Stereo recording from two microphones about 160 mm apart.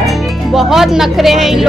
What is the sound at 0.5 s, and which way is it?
Speech, centre (ahead or behind).